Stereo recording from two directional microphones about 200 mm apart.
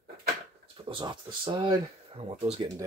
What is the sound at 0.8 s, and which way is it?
Speech, 25° right (ahead or behind).